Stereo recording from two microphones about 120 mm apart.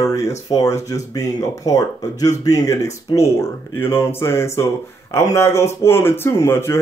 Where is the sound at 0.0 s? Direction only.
25° left (ahead or behind).